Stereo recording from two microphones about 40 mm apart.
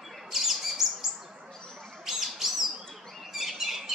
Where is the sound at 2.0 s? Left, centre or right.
Centre.